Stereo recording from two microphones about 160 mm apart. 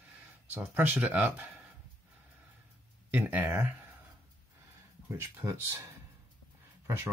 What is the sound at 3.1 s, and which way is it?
Speech, 10° right (ahead or behind).